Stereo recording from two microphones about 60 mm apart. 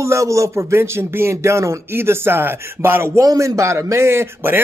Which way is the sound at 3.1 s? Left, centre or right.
Right.